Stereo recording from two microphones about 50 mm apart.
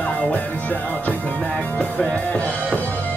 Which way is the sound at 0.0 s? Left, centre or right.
Centre.